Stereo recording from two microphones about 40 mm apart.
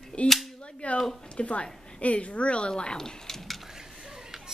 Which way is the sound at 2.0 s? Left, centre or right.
Left.